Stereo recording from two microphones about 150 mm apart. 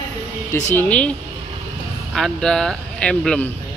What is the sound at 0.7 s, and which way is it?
Speech, 10° left (ahead or behind).